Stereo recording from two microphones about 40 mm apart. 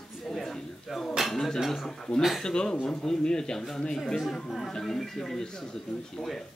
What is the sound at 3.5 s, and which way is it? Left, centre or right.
Speech, centre.